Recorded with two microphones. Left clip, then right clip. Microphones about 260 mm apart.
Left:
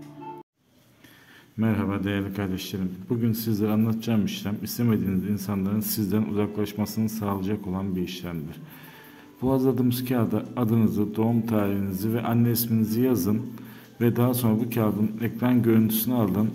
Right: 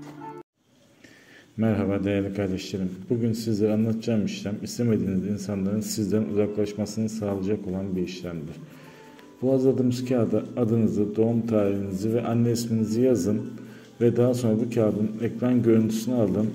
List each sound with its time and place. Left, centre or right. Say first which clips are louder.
1.6 s a man's voice: right 2 dB; centre
9.6 s a man's voice: right 2 dB; left